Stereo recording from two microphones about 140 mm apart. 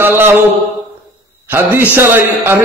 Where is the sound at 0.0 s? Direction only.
15° right (ahead or behind).